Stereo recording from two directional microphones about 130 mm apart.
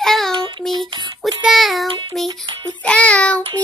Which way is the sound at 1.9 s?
35° right (ahead or behind).